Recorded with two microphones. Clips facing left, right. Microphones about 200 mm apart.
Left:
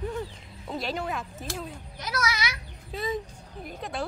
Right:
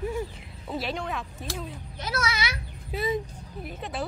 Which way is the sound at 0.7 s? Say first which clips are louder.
Even; centre (ahead or behind).